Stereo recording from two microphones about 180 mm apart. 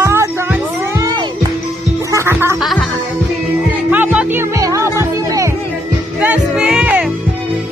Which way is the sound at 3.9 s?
10° right (ahead or behind).